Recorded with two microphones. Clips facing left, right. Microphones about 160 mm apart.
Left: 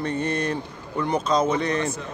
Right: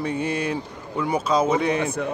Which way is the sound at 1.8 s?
60° right (ahead or behind).